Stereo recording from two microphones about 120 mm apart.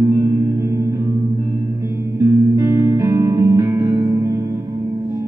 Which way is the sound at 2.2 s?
25° right (ahead or behind).